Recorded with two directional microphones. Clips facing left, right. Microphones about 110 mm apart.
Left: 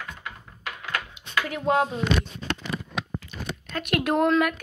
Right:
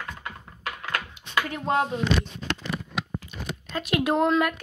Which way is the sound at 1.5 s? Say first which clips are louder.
Left 3 dB; 5° left (ahead or behind).